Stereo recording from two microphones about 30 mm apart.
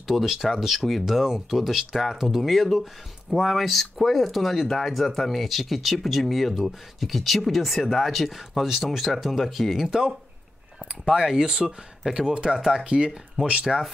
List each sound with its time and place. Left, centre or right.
0.0 s speech: centre
2.4 s speech: centre
9.8 s speech: right
11.1 s speech: centre
12.2 s speech: right
12.5 s speech: centre
12.8 s speech: right
13.7 s speech: centre